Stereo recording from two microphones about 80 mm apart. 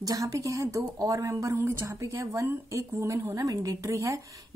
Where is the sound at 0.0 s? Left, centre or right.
Right.